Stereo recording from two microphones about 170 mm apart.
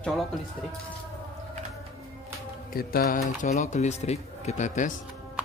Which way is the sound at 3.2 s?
45° left (ahead or behind).